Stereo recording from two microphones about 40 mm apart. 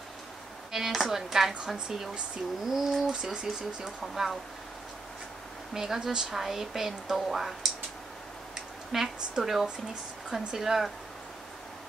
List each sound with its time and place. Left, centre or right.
0.7 s a woman's voice: centre
4.0 s speech: centre
5.7 s a woman's voice: centre
8.9 s a woman's voice: centre